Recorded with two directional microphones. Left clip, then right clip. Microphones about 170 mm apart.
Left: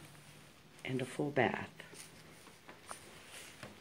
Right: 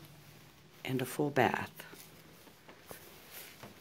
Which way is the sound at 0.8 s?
15° right (ahead or behind).